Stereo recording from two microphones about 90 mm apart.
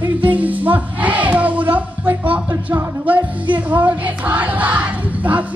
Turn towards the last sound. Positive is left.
turn(degrees=-15)  # may be behind; listen again after turning